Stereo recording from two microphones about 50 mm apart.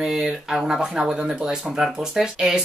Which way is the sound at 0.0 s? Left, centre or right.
Centre.